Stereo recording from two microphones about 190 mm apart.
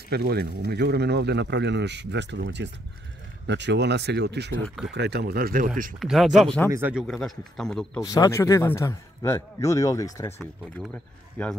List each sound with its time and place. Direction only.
0.1 s speech: 55° right (ahead or behind)
4.6 s speech: centre (ahead or behind)
4.9 s speech: 60° right (ahead or behind)
5.9 s speech: centre (ahead or behind)
6.7 s speech: 5° right (ahead or behind)
8.0 s a man's voice: 20° left (ahead or behind)
10.4 s speech: 5° left (ahead or behind)